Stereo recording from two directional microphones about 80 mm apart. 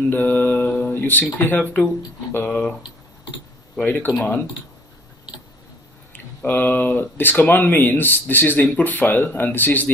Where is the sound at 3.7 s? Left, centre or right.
Left.